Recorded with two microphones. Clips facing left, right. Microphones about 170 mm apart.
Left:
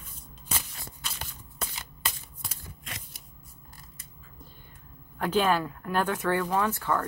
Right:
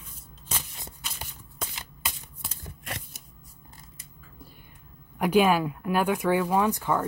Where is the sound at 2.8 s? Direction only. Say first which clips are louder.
Right 7 dB; 60° right (ahead or behind).